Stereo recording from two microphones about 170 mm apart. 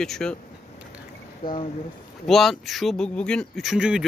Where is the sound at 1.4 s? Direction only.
60° left (ahead or behind).